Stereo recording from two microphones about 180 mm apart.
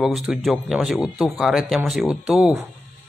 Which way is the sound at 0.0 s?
5° right (ahead or behind).